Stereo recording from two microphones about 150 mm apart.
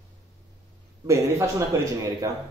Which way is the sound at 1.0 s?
20° right (ahead or behind).